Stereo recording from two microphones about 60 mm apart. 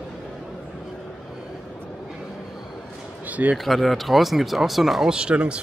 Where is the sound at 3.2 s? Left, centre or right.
Right.